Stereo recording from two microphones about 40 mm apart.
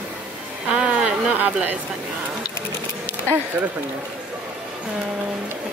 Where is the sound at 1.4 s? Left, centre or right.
Right.